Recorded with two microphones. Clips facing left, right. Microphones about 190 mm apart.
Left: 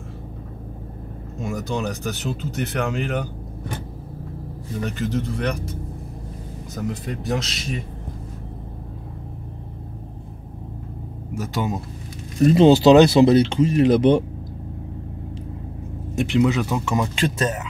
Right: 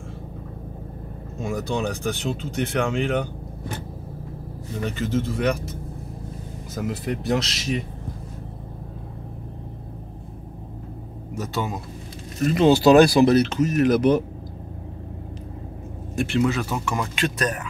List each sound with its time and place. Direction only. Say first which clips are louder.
1.4 s speech: even; centre (ahead or behind)
4.8 s speech: right 1 dB; centre (ahead or behind)
6.7 s speech: right 1 dB; 5° right (ahead or behind)
11.3 s speech: left 2 dB; 15° left (ahead or behind)
12.4 s speech: left 4 dB; 30° left (ahead or behind)
16.2 s speech: left 3 dB; 15° left (ahead or behind)